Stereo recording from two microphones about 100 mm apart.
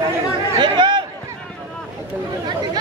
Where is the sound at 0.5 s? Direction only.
50° right (ahead or behind).